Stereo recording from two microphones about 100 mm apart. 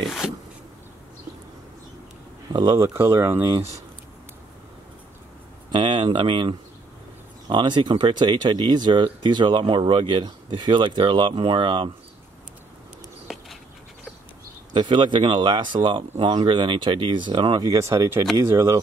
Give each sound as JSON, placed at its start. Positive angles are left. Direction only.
{"t": 0.2, "sound": "a sound", "side_deg": -5}
{"t": 2.5, "sound": "speech", "side_deg": -45}
{"t": 2.8, "sound": "speech", "side_deg": -25}
{"t": 5.7, "sound": "speech", "side_deg": -50}
{"t": 13.3, "sound": "a sound", "side_deg": -5}
{"t": 14.7, "sound": "speech", "side_deg": -55}
{"t": 17.6, "sound": "speech", "side_deg": -30}